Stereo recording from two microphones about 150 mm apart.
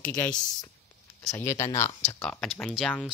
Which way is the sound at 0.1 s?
10° left (ahead or behind).